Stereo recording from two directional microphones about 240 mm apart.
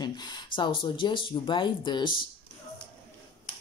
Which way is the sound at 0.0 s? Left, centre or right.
Centre.